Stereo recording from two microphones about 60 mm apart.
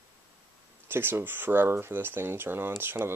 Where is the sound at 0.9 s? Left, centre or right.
Right.